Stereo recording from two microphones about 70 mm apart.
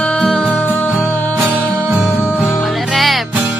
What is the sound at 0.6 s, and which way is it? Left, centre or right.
Music, left.